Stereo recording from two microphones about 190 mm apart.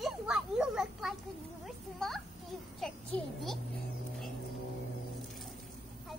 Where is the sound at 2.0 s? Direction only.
Centre (ahead or behind).